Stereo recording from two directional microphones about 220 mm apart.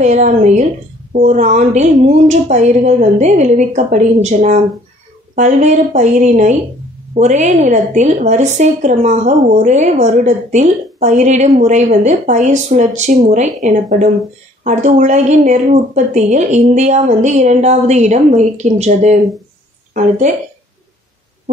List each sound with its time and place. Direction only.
0.0 s a woman's voice: 35° right (ahead or behind)